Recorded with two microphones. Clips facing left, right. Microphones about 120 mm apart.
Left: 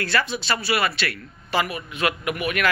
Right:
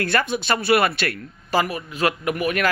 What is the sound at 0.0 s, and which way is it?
Speech, 50° right (ahead or behind).